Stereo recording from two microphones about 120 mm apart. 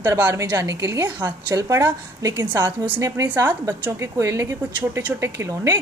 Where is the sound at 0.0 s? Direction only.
25° right (ahead or behind).